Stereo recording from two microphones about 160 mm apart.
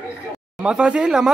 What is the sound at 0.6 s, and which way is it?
Speech, 5° right (ahead or behind).